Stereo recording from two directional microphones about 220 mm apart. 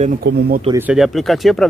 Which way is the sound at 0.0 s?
40° right (ahead or behind).